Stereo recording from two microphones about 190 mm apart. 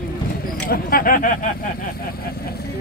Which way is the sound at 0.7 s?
50° left (ahead or behind).